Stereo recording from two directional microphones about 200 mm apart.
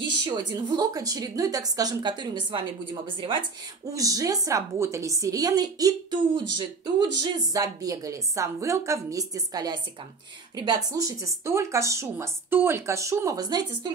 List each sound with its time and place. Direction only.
0.2 s a woman's voice: 20° right (ahead or behind)
10.9 s a woman's voice: 15° right (ahead or behind)